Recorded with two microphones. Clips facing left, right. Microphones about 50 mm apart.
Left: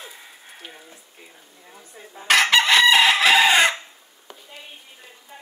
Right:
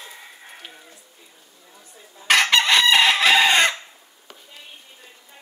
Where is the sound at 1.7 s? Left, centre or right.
Left.